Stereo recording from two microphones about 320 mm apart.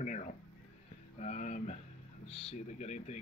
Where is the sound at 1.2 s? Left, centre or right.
Left.